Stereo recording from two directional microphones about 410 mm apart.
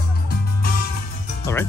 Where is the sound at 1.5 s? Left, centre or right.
Centre.